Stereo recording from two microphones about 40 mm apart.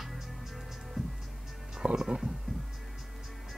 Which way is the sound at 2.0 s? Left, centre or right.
Centre.